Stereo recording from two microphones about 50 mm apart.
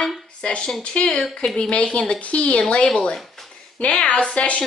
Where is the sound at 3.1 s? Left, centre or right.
Centre.